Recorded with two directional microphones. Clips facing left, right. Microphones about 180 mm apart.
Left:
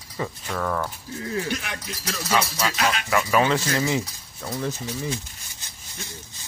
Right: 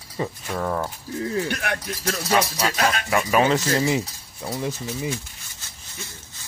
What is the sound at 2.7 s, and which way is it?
Speech, 45° right (ahead or behind).